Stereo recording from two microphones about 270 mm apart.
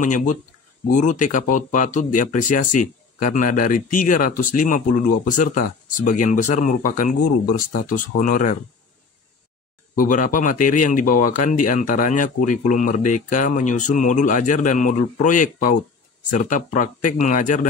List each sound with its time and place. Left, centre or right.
0.0 s speech: left
9.9 s speech: left